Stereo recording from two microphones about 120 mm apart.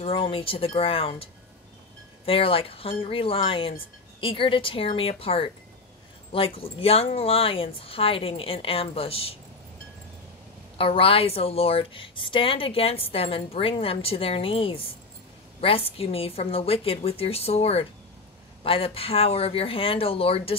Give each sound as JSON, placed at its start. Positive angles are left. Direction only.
{"t": 0.0, "sound": "a woman's voice", "side_deg": 50}
{"t": 10.8, "sound": "a woman's voice", "side_deg": 50}